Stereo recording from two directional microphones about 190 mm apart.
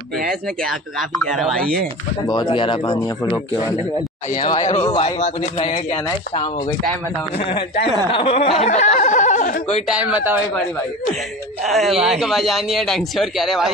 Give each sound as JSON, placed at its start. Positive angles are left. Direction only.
{"t": 0.3, "sound": "speech", "side_deg": 0}
{"t": 2.2, "sound": "speech", "side_deg": 20}
{"t": 4.6, "sound": "speech", "side_deg": 35}
{"t": 9.8, "sound": "speech", "side_deg": -5}
{"t": 11.6, "sound": "speech", "side_deg": 0}